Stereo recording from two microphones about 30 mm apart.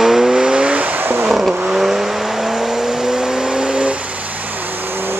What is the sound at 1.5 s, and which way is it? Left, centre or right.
Vehicle, centre.